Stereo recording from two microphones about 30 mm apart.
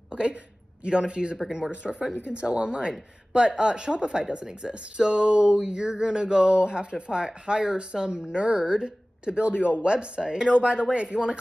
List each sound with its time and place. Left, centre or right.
0.1 s a sound: right
0.8 s speech: right
7.1 s speech: right
7.4 s speech: right